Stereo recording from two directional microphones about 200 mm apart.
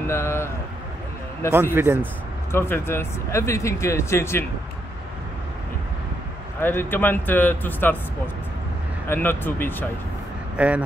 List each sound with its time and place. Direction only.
0.0 s speech: 15° left (ahead or behind)
1.5 s a man's voice: 10° right (ahead or behind)
2.5 s speech: 10° left (ahead or behind)
6.6 s speech: 10° left (ahead or behind)
9.1 s speech: 10° left (ahead or behind)
10.5 s speech: 5° right (ahead or behind)